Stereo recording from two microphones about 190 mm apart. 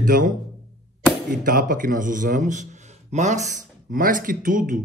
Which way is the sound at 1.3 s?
45° right (ahead or behind).